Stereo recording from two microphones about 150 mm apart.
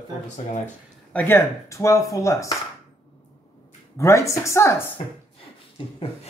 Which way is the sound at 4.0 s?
20° left (ahead or behind).